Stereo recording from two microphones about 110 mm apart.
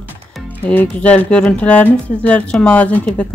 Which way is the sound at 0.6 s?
15° left (ahead or behind).